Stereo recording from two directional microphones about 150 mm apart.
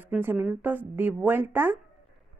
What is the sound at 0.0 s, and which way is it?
Speech, 15° right (ahead or behind).